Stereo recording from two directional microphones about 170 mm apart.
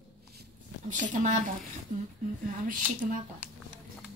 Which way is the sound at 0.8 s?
50° right (ahead or behind).